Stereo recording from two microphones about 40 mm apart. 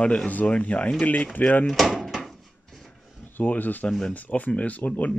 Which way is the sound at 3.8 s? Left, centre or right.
Centre.